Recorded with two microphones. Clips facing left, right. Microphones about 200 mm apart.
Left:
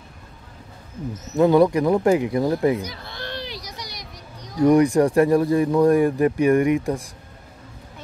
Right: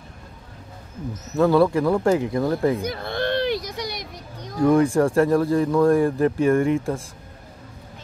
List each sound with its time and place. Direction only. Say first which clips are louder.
1.3 s speech: left 2 dB; 15° left (ahead or behind)
2.8 s a sound: right 8 dB; 55° right (ahead or behind)
4.6 s speech: left 2 dB; 15° left (ahead or behind)